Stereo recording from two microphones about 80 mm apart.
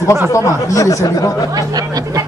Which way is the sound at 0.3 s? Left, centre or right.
Left.